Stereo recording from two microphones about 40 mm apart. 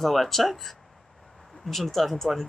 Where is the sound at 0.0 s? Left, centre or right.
Centre.